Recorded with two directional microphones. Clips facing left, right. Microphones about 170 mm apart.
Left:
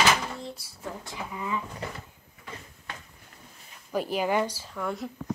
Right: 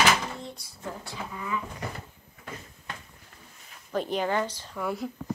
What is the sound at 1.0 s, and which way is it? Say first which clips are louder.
Speech: left 2 dB; 20° left (ahead or behind).